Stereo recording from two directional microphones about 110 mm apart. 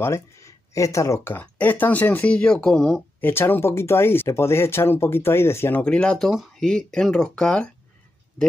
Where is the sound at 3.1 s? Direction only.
20° left (ahead or behind).